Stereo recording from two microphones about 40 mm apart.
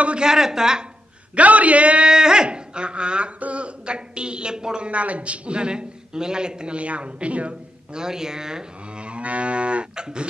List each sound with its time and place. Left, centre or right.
0.2 s speech: centre
1.3 s a man's voice: right
2.0 s a man's voice: centre
4.8 s a man's voice: right
7.9 s speech: centre
9.0 s a man's voice: right